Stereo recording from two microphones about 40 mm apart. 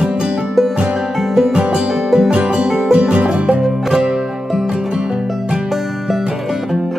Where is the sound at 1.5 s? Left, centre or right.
Right.